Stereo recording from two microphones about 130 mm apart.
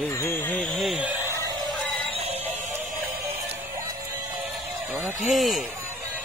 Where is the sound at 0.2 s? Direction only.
15° left (ahead or behind).